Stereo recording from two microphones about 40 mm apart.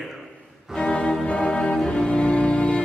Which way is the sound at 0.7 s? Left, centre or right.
Left.